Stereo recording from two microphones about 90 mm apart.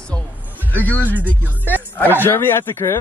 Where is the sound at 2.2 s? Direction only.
25° left (ahead or behind).